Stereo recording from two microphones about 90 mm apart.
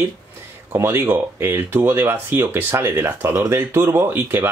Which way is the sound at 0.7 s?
25° right (ahead or behind).